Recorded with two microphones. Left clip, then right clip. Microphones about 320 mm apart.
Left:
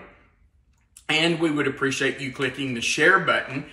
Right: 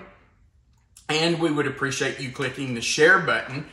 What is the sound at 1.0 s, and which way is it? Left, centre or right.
A man's voice, centre.